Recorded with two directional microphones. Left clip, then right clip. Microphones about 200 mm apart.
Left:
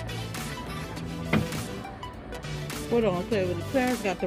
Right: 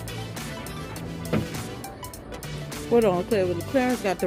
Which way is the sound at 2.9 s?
20° right (ahead or behind).